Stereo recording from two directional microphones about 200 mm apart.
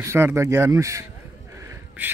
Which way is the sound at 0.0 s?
10° right (ahead or behind).